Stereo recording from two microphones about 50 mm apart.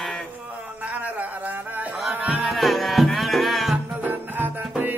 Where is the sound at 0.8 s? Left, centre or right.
Right.